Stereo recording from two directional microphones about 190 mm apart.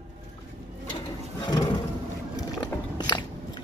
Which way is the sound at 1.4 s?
20° left (ahead or behind).